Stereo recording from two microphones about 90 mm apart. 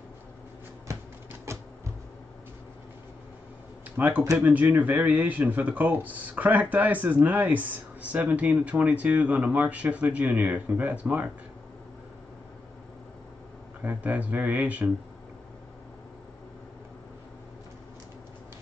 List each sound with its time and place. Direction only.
1.5 s a sound: 30° right (ahead or behind)
3.9 s speech: 20° right (ahead or behind)
13.8 s speech: 15° right (ahead or behind)